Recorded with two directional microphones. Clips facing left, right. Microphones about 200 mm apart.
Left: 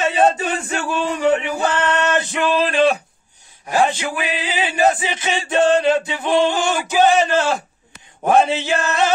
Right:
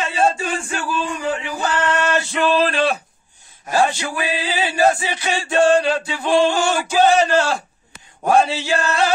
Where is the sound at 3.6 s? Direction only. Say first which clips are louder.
Left 1 dB; 15° left (ahead or behind).